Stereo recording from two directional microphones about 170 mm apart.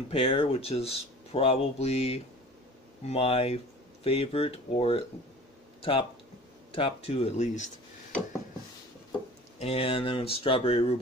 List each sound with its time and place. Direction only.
0.1 s speech: 30° left (ahead or behind)
9.6 s speech: 35° left (ahead or behind)